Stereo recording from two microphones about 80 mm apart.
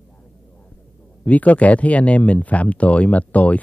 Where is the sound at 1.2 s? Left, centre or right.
Centre.